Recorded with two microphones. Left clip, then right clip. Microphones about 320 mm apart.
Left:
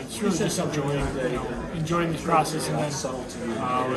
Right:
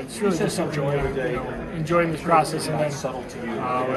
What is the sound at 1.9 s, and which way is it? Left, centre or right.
Speech, centre.